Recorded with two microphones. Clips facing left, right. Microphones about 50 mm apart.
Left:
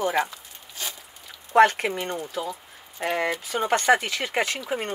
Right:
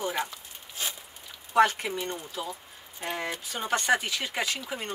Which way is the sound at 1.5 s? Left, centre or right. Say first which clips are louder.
Left 5 dB; left.